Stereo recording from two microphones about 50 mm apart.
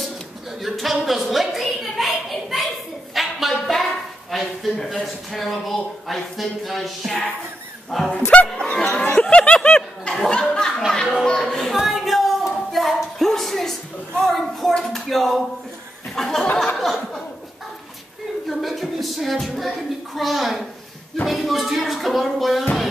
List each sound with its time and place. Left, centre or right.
0.6 s a sound: centre
4.3 s speech: centre
8.3 s speech: left
8.7 s chuckle: centre
9.2 s speech: left
10.3 s chuckle: centre
11.7 s a sound: centre
14.8 s speech: centre
16.2 s a sound: centre
18.5 s speech: centre